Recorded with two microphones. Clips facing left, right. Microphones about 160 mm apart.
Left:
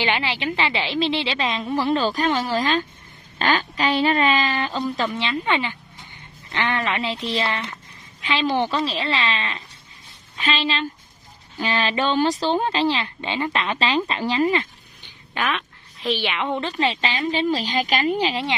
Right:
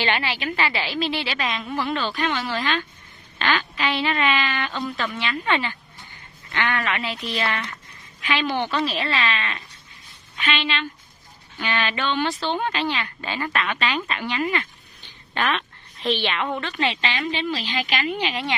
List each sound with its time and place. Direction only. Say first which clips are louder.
0.0 s a woman's voice: left 1 dB; 15° left (ahead or behind)
6.5 s a woman's voice: left 1 dB; 25° left (ahead or behind)
15.0 s a sound: right 1 dB; 10° left (ahead or behind)
16.5 s speech: left 3 dB; 30° left (ahead or behind)